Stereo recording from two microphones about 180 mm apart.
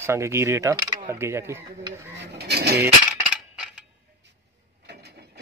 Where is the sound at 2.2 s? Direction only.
65° right (ahead or behind).